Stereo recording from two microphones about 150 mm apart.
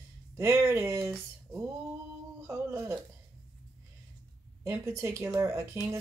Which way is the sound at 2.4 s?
20° right (ahead or behind).